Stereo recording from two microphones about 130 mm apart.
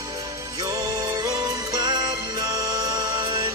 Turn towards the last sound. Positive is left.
turn(degrees=-35)  # may be behind; listen again after turning